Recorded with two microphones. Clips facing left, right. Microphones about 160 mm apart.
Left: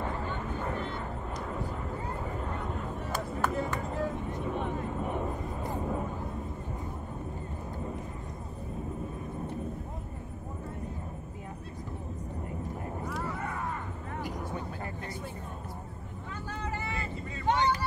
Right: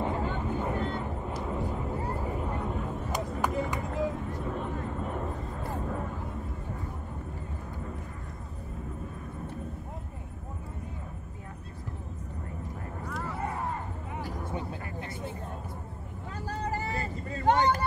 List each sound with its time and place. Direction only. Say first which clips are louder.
0.0 s a sound: right 4 dB; 20° right (ahead or behind)
1.2 s vehicle: right 3 dB; 15° right (ahead or behind)
3.1 s music: even; 15° right (ahead or behind)
4.6 s vehicle: left 1 dB; 10° left (ahead or behind)
13.4 s a sound: right 2 dB; 30° right (ahead or behind)
16.4 s vehicle: right 4 dB; 35° right (ahead or behind)